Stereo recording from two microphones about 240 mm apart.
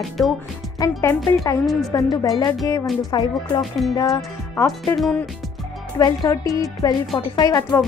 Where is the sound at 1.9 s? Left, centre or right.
Centre.